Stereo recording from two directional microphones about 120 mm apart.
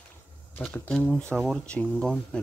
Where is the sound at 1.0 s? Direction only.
10° left (ahead or behind).